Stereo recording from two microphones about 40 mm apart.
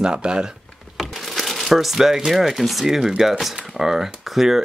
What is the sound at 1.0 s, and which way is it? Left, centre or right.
Speech, centre.